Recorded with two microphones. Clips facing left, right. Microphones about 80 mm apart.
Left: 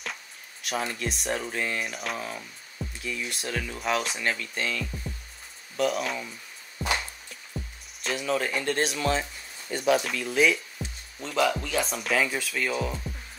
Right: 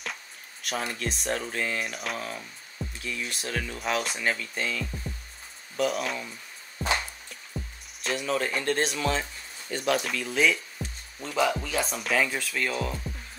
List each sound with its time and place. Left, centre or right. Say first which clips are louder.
0.0 s a sound: even; centre
0.9 s speech: even; centre
7.2 s music: even; centre
9.8 s speech: left 3 dB; centre
10.8 s music: even; centre
11.1 s speech: left 1 dB; centre